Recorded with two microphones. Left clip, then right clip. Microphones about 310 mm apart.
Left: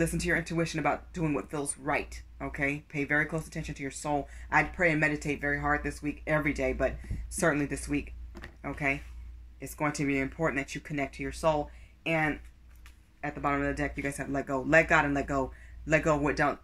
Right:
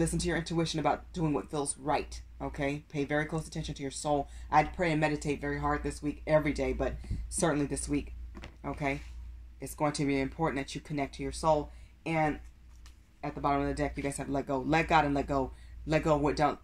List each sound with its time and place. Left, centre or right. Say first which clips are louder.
0.2 s speech: left 3 dB; centre
12.0 s speech: left 1 dB; centre